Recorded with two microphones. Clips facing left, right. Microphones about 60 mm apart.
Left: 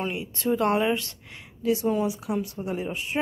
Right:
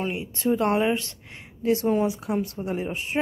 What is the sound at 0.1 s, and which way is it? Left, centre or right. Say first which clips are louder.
A woman's voice: right 2 dB; right.